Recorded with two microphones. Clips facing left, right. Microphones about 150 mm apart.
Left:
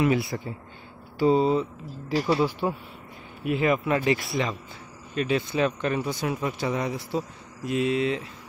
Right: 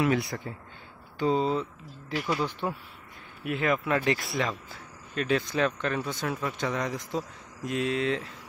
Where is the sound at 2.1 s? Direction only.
35° left (ahead or behind).